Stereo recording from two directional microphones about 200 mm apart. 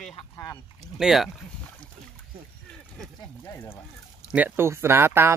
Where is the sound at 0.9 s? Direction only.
Centre (ahead or behind).